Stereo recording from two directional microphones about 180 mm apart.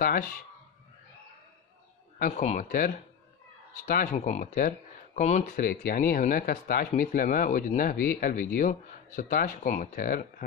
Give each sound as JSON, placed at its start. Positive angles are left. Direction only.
{"t": 0.0, "sound": "speech", "side_deg": 50}
{"t": 2.3, "sound": "speech", "side_deg": 40}